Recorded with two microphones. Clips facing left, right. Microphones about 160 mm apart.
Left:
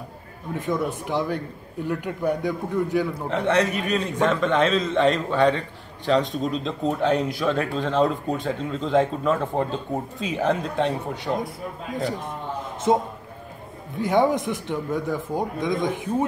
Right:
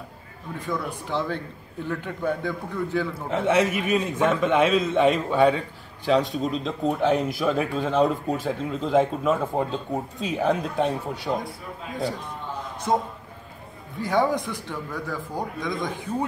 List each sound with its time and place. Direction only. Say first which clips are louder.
0.6 s a man's voice: left 4 dB; 20° left (ahead or behind)
3.2 s a man's voice: right 3 dB; 5° right (ahead or behind)
12.9 s speech: left 3 dB; 20° left (ahead or behind)